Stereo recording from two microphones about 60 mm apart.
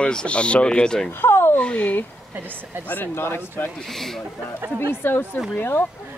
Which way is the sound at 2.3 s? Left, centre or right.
Right.